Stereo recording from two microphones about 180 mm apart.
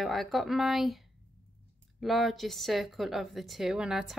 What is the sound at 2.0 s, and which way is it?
A woman's voice, centre (ahead or behind).